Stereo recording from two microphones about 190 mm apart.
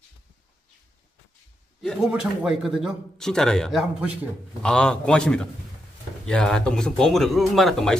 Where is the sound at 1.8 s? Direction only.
Centre (ahead or behind).